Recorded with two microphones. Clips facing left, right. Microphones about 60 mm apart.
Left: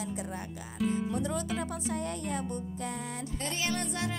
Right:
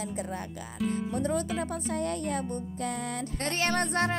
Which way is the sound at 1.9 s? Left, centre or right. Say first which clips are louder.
Right 5 dB; right.